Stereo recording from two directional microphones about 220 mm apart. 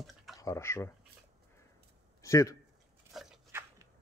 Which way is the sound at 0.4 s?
15° left (ahead or behind).